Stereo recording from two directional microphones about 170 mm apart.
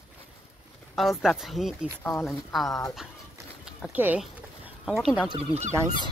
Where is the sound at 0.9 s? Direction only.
Centre (ahead or behind).